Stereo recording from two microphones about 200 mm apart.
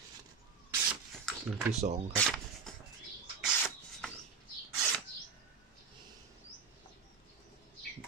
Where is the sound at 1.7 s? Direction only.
35° right (ahead or behind).